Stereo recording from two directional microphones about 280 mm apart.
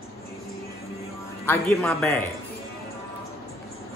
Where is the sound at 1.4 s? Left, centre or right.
Centre.